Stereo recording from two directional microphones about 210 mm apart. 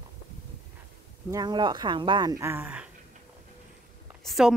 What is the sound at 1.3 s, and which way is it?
A woman's voice, 20° right (ahead or behind).